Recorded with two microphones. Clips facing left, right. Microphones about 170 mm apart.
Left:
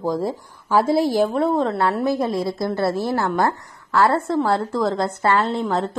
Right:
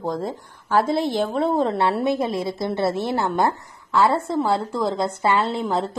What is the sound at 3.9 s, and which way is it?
A woman's voice, centre (ahead or behind).